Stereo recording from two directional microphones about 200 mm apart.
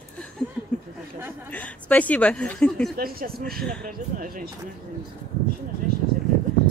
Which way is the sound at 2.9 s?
50° right (ahead or behind).